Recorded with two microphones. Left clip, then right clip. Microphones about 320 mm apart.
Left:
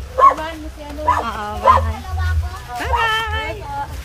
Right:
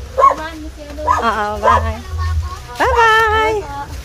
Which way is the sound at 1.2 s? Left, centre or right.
Centre.